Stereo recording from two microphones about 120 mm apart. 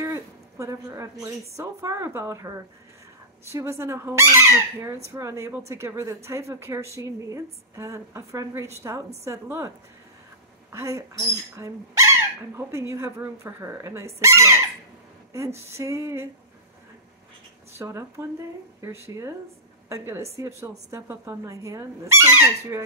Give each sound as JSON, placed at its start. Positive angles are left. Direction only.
{"t": 0.0, "sound": "a sound", "side_deg": -25}
{"t": 1.6, "sound": "speech", "side_deg": -25}
{"t": 10.7, "sound": "speech", "side_deg": -25}
{"t": 15.6, "sound": "speech", "side_deg": -25}
{"t": 17.7, "sound": "speech", "side_deg": -25}